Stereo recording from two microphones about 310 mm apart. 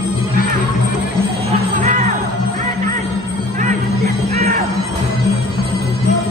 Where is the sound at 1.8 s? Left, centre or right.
Right.